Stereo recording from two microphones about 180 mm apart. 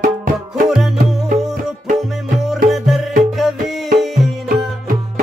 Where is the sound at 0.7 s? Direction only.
Centre (ahead or behind).